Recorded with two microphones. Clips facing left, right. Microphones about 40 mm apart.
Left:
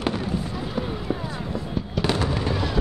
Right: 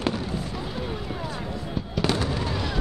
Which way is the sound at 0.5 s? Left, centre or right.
Centre.